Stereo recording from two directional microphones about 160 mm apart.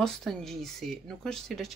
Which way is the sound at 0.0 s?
Centre (ahead or behind).